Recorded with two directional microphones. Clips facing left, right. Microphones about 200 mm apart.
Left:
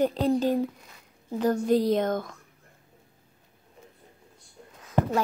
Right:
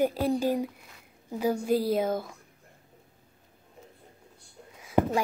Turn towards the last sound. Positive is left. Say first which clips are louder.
# right 1 dB
turn(degrees=-10)  # may be behind; listen again after turning